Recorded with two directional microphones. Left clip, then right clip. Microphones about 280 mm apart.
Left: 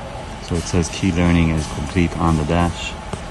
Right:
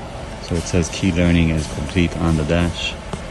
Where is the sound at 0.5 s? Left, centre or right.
Centre.